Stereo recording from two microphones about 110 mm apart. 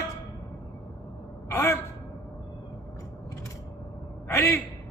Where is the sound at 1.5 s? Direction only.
25° left (ahead or behind).